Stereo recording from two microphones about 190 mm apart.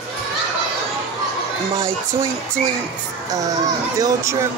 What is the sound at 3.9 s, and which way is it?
Speech, 20° right (ahead or behind).